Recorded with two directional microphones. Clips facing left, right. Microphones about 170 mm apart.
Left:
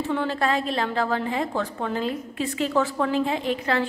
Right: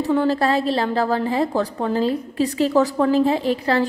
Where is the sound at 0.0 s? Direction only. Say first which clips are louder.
Right 6 dB; 40° right (ahead or behind).